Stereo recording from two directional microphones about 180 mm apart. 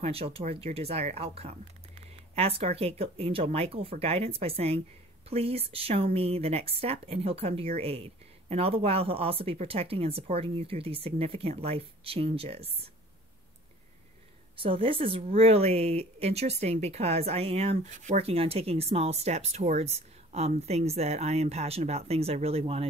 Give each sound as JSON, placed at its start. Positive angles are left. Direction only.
{"t": 0.0, "sound": "speech", "side_deg": -35}
{"t": 14.6, "sound": "speech", "side_deg": -30}